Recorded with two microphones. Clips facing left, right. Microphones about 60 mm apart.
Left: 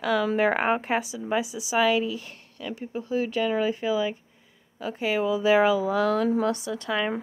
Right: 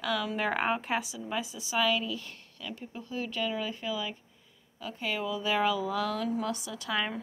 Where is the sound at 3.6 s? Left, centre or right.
Centre.